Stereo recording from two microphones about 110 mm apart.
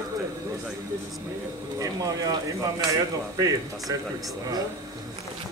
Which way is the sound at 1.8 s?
35° right (ahead or behind).